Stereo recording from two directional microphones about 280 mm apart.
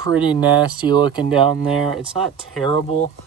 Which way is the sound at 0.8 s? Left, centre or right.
Centre.